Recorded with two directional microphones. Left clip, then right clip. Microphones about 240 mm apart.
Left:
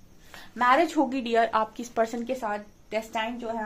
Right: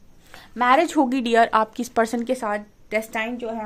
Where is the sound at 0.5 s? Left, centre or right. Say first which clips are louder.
Right 4 dB; right.